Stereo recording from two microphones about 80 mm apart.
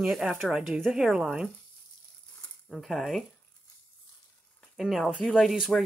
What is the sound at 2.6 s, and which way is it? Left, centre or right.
Speech, centre.